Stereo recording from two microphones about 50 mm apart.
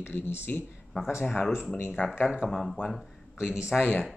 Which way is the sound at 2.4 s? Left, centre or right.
Centre.